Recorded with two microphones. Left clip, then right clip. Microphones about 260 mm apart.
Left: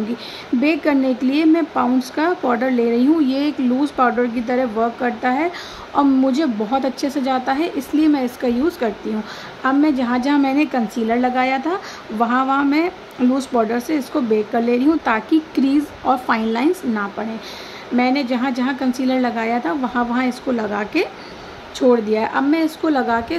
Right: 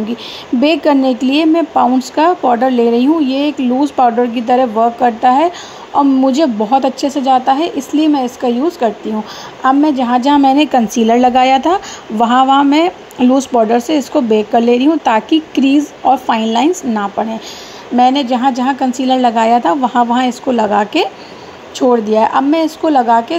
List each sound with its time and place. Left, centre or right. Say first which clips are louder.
0.6 s a woman's voice: right 7 dB; centre
17.9 s a woman's voice: right 8 dB; centre